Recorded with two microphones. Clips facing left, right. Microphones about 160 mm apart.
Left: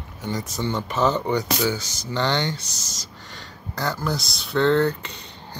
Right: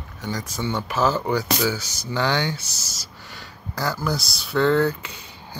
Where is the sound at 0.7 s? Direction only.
5° right (ahead or behind).